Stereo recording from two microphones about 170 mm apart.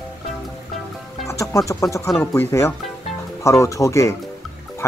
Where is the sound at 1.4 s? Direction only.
15° left (ahead or behind).